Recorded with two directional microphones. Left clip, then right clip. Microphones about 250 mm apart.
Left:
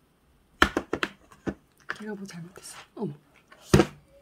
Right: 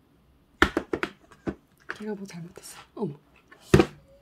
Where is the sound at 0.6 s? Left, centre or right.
Left.